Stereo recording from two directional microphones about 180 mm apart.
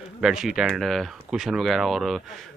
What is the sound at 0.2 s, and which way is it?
Speech, centre (ahead or behind).